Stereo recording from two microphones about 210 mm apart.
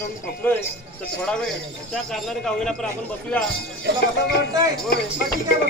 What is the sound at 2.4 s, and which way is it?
Speech, 5° left (ahead or behind).